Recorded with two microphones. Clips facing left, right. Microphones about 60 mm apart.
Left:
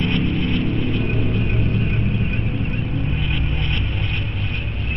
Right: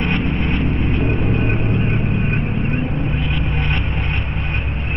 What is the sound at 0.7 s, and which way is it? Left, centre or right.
Vehicle, right.